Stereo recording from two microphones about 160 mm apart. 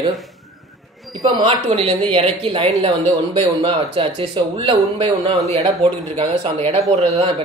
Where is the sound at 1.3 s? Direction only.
35° right (ahead or behind).